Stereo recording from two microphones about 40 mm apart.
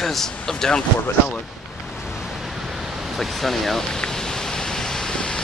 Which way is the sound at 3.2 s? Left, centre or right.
Centre.